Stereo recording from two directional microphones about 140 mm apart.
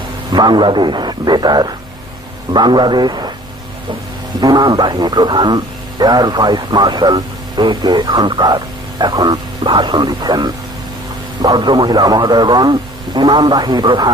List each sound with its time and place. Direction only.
0.3 s a man's voice: 30° right (ahead or behind)
4.4 s a man's voice: 30° right (ahead or behind)